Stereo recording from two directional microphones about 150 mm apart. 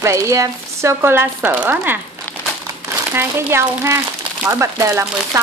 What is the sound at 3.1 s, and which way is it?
Speech, 15° right (ahead or behind).